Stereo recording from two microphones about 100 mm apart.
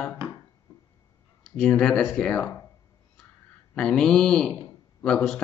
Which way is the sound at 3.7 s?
5° left (ahead or behind).